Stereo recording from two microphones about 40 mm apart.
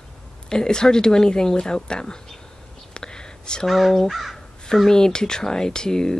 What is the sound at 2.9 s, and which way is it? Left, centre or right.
Whispering, centre.